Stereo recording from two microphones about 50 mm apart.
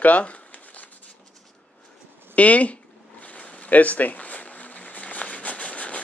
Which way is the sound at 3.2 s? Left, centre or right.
Left.